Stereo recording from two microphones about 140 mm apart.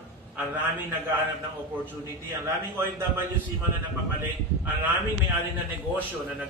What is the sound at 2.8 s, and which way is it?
Speech, 20° right (ahead or behind).